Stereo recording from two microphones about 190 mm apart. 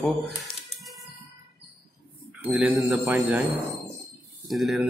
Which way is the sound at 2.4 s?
10° right (ahead or behind).